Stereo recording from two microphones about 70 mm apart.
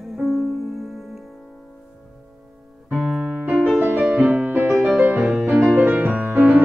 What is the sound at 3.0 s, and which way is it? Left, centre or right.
Keyboard, centre.